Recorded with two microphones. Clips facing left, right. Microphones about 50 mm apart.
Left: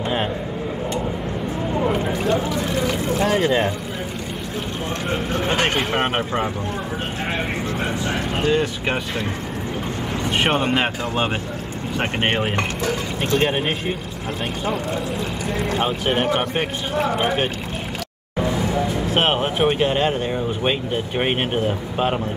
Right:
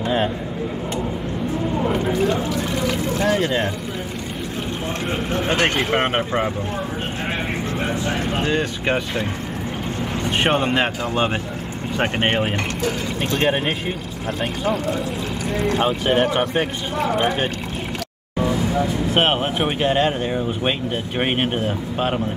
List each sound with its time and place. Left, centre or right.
1.9 s a sound: centre
3.3 s speech: centre
5.5 s speech: centre
5.9 s speech: centre
8.4 s speech: right
10.3 s speech: centre
15.6 s speech: centre
19.1 s speech: centre